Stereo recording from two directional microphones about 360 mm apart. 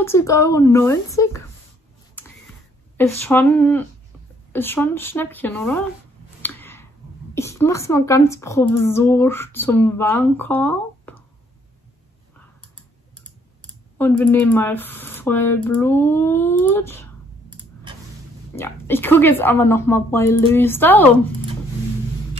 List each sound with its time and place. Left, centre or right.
0.0 s a woman's voice: centre
3.0 s speech: centre
6.4 s a sound: centre
7.3 s a woman's voice: centre
13.9 s speech: centre
18.6 s a woman's voice: centre